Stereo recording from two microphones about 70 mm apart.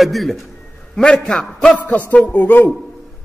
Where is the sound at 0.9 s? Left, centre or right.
Centre.